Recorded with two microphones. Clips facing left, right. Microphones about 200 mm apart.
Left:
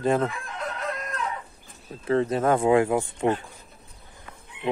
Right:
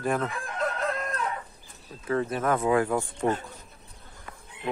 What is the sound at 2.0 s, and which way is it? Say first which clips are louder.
Speech: left 4 dB; 30° left (ahead or behind).